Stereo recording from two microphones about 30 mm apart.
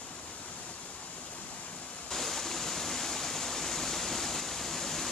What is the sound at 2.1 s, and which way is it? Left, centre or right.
Waterfall, centre.